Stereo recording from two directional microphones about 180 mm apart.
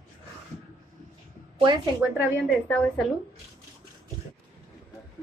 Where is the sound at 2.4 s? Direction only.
5° left (ahead or behind).